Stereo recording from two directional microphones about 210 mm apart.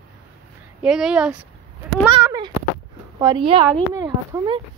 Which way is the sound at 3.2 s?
20° right (ahead or behind).